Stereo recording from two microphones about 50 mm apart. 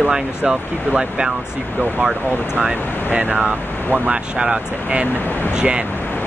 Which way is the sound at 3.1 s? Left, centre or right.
Right.